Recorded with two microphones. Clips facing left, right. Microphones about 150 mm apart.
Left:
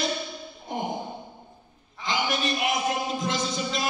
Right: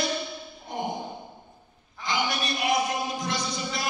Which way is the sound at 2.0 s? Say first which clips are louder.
Left 1 dB; 20° left (ahead or behind).